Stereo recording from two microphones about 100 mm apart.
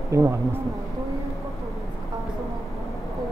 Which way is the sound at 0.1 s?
30° right (ahead or behind).